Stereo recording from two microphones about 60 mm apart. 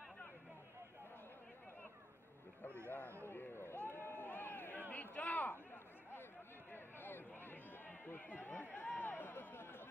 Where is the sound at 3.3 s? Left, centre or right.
Left.